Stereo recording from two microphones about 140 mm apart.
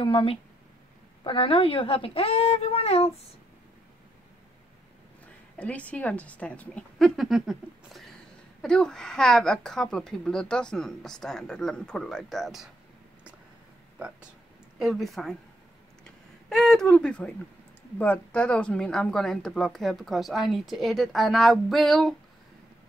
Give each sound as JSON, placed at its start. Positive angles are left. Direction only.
{"t": 0.0, "sound": "a woman's voice", "side_deg": 40}
{"t": 5.6, "sound": "a woman's voice", "side_deg": 10}
{"t": 14.8, "sound": "speech", "side_deg": 0}